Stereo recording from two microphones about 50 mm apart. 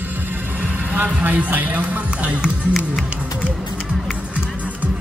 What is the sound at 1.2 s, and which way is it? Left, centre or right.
Speech, right.